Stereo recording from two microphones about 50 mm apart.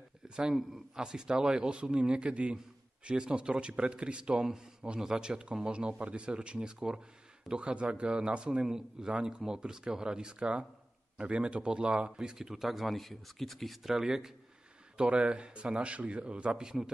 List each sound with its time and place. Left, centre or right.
0.4 s a man's voice: centre
8.6 s a man's voice: centre